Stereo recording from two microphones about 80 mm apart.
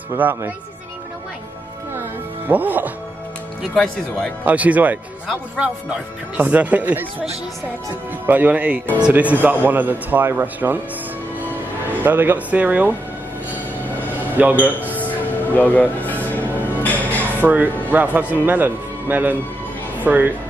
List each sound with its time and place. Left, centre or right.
0.2 s speech: right
2.4 s speech: right
3.7 s speech: centre
4.5 s speech: centre
8.3 s speech: right
12.0 s speech: right
14.3 s a man's voice: right
15.0 s music: left
17.4 s speech: right